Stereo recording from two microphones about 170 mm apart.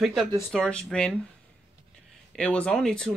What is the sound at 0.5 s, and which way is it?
Speech, 5° left (ahead or behind).